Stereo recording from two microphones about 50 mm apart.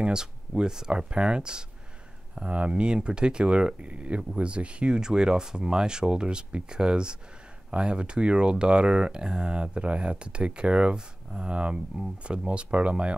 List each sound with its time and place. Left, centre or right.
0.0 s speech: centre